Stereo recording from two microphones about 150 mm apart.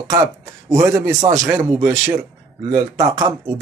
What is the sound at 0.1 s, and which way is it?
Speech, 20° right (ahead or behind).